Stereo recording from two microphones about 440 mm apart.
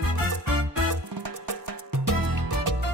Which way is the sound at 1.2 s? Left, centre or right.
Right.